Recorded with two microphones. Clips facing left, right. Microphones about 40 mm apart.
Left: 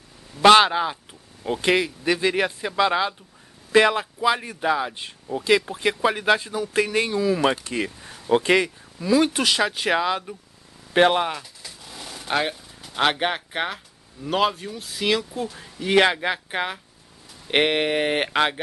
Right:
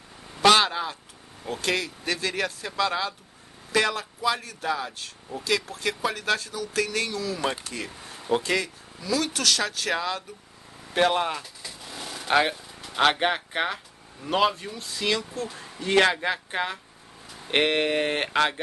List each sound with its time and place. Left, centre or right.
0.4 s a man's voice: left
11.6 s a sound: centre
13.0 s speech: centre
15.4 s speech: centre
15.8 s speech: centre